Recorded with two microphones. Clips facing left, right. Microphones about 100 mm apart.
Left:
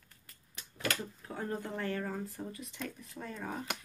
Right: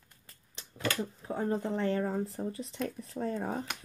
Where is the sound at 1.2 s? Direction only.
25° right (ahead or behind).